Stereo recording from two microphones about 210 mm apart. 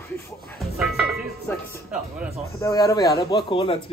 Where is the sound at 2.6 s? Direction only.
15° left (ahead or behind).